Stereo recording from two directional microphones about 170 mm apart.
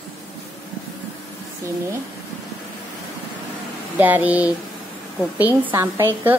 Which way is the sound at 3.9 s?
10° right (ahead or behind).